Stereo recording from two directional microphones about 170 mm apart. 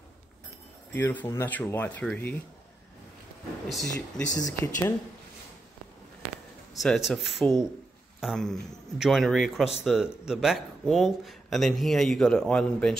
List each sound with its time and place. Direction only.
0.9 s speech: 10° left (ahead or behind)
3.6 s speech: centre (ahead or behind)
3.9 s speech: 20° left (ahead or behind)
6.8 s speech: centre (ahead or behind)